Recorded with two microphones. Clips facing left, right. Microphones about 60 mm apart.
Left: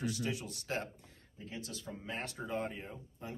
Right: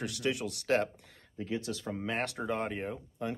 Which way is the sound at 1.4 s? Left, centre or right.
Right.